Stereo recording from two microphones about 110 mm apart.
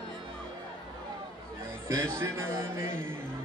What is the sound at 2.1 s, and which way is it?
A man's voice, 25° right (ahead or behind).